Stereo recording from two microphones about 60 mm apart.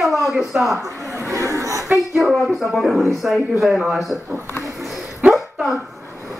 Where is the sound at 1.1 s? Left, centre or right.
Right.